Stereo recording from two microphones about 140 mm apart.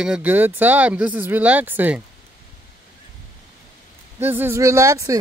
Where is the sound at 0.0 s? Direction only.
10° right (ahead or behind).